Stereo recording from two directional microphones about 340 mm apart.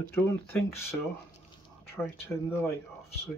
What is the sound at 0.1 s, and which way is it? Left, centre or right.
Speech, centre.